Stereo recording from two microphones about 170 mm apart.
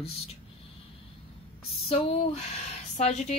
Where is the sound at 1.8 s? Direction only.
35° left (ahead or behind).